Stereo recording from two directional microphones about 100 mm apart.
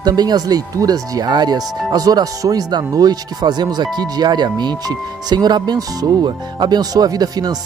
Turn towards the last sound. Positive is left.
turn(degrees=-40)  # may be behind; listen again after turning